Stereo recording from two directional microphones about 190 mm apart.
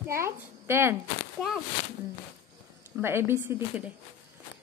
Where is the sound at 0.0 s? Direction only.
15° right (ahead or behind).